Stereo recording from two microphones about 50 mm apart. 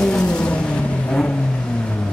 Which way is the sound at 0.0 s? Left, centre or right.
Centre.